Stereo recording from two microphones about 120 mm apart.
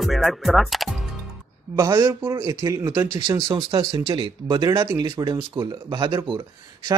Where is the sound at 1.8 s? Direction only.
25° right (ahead or behind).